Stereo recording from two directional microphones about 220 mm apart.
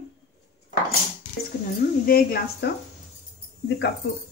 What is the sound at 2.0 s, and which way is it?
Speech, 45° left (ahead or behind).